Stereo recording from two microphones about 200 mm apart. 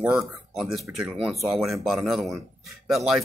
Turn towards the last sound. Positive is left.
turn(degrees=-5)  # may be behind; listen again after turning